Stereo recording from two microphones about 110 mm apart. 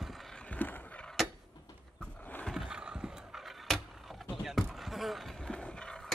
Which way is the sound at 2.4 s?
Centre (ahead or behind).